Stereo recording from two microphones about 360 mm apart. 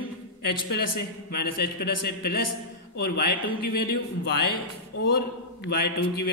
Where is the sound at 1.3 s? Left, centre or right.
Left.